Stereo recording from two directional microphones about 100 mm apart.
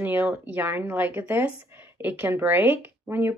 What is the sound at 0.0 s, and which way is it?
Speech, 15° right (ahead or behind).